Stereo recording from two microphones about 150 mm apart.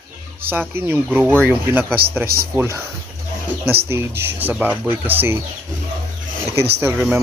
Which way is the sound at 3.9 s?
15° right (ahead or behind).